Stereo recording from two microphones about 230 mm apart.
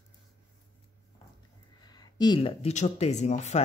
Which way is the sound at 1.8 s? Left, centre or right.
Centre.